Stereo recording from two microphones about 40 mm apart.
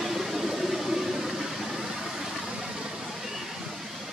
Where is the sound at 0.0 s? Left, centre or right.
Centre.